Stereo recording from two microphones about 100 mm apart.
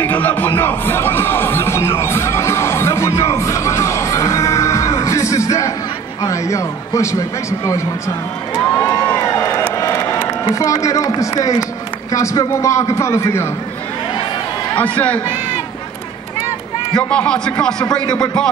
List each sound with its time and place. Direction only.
0.0 s a sound: 20° left (ahead or behind)
6.2 s a man's voice: 30° left (ahead or behind)
8.5 s crowd: 25° left (ahead or behind)
10.4 s a man's voice: 35° left (ahead or behind)
14.8 s a man's voice: 15° left (ahead or behind)
16.9 s a man's voice: 10° left (ahead or behind)